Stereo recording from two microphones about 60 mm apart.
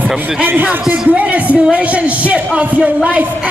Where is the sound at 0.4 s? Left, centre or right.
Right.